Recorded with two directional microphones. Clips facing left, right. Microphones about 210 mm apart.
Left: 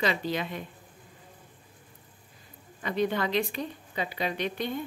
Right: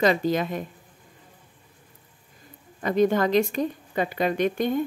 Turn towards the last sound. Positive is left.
turn(degrees=-50)  # may be behind; listen again after turning